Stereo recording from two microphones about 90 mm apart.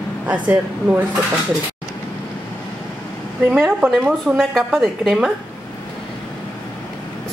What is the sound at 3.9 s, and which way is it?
A woman's voice, 5° left (ahead or behind).